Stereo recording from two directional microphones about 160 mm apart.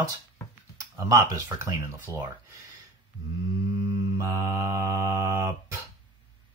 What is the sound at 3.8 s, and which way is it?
Mantra, 20° right (ahead or behind).